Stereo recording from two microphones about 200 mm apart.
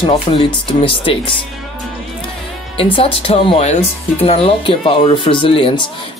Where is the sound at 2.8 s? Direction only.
25° left (ahead or behind).